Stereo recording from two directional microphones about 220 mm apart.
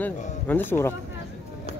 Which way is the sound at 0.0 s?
10° left (ahead or behind).